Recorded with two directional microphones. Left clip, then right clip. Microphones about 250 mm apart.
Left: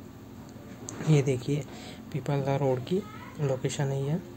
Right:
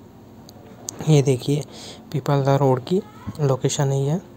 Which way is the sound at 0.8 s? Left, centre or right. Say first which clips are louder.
Right 8 dB; right.